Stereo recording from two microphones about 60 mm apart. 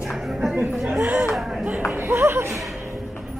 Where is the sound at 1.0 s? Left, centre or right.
Right.